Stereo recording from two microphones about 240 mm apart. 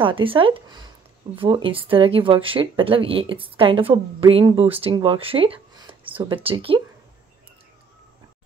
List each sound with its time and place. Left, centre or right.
0.0 s speech: right